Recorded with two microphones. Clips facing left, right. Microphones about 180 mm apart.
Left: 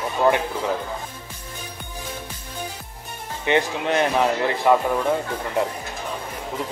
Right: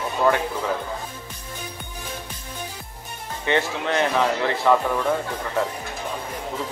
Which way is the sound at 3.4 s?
15° left (ahead or behind).